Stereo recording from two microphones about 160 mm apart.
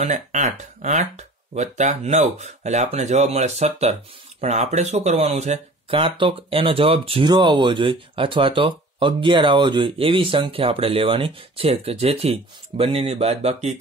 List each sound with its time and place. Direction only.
0.0 s speech: 50° right (ahead or behind)